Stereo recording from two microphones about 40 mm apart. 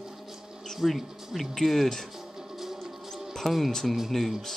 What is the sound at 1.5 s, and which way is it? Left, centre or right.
Speech, centre.